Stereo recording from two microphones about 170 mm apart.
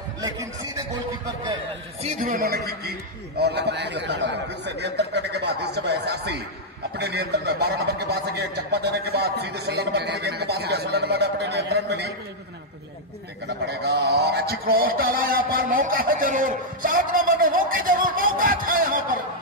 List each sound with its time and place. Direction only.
2.0 s a man's voice: 50° right (ahead or behind); by 2.9 s 65° right (ahead or behind)
3.3 s a man's voice: 80° right
13.7 s a sound: 75° right (ahead or behind); by 19.1 s 55° right (ahead or behind)